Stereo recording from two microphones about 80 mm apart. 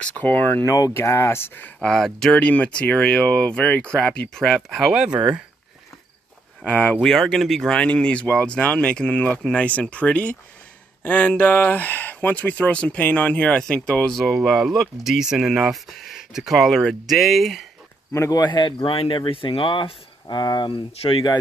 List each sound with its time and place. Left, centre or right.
0.0 s speech: centre
0.7 s speech: left
0.9 s speech: left
1.8 s speech: centre
4.9 s speech: centre
6.6 s speech: centre
7.1 s speech: centre
14.4 s speech: centre
18.1 s speech: left
18.4 s speech: left